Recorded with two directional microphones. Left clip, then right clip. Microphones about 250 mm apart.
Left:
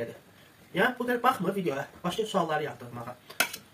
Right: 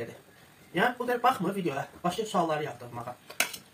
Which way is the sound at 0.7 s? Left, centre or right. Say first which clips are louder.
Even; centre.